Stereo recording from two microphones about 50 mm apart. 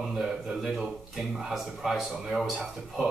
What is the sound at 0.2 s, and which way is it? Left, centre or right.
Speech, centre.